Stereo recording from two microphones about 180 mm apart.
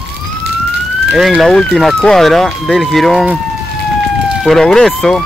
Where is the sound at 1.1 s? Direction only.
Centre (ahead or behind).